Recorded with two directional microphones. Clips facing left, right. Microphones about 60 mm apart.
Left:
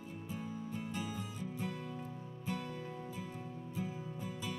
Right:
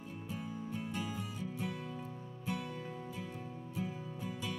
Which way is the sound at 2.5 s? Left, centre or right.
Centre.